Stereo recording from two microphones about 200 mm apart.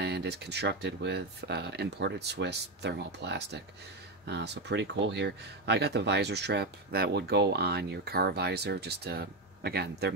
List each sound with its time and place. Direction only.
0.0 s speech: 55° right (ahead or behind)